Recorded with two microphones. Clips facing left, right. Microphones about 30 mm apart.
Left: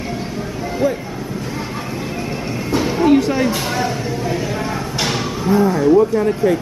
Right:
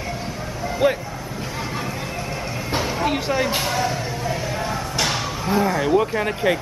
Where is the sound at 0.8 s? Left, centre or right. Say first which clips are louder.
Even; right.